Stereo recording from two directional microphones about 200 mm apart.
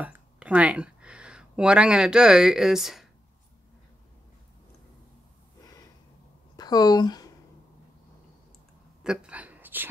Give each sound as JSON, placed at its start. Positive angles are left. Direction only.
{"t": 0.0, "sound": "speech", "side_deg": -5}
{"t": 6.5, "sound": "a woman's voice", "side_deg": 20}
{"t": 9.0, "sound": "a sound", "side_deg": -5}